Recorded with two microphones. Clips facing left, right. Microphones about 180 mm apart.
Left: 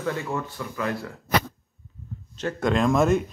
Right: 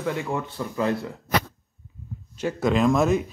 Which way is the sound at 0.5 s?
25° right (ahead or behind).